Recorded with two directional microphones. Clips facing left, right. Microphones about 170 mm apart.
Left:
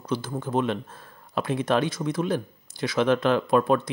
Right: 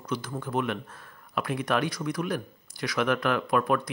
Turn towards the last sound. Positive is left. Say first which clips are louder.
# left 4 dB
turn(degrees=25)  # may be behind; listen again after turning